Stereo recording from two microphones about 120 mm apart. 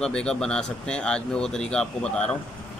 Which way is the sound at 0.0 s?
5° left (ahead or behind).